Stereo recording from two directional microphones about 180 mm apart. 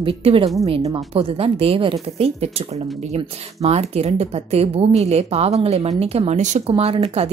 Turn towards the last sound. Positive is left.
turn(degrees=-35)  # may be behind; listen again after turning